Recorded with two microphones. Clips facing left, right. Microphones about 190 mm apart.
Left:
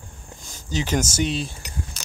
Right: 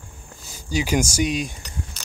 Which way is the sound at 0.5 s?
10° right (ahead or behind).